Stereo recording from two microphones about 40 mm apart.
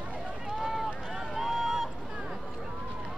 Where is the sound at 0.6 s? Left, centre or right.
Centre.